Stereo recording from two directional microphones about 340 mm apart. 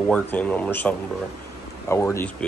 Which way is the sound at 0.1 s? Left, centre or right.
Centre.